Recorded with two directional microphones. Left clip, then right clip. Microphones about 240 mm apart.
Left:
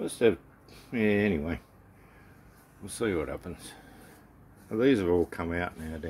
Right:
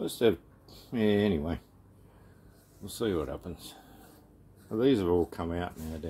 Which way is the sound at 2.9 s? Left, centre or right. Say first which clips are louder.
Left 1 dB; centre.